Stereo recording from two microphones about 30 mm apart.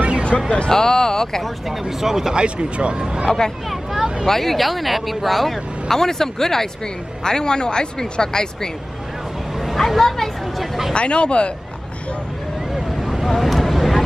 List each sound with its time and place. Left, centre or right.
0.3 s speech: left
1.7 s speech: centre
2.3 s speech: right
3.3 s speech: left
4.3 s speech: centre; by 8.5 s left
9.8 s speech: centre
10.9 s speech: left
12.7 s vehicle: centre
13.7 s a sound: centre